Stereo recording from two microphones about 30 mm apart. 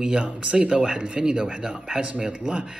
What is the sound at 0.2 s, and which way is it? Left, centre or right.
Speech, right.